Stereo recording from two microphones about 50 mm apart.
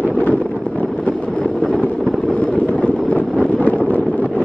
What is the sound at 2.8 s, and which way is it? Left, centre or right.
Vehicle, left.